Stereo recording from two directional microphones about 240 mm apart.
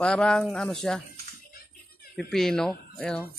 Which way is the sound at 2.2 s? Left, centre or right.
Centre.